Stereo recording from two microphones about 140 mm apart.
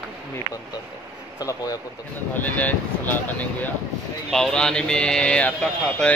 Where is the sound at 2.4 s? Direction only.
10° left (ahead or behind).